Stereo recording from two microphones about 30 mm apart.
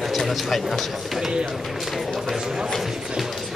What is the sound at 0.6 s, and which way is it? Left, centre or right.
Speech, centre.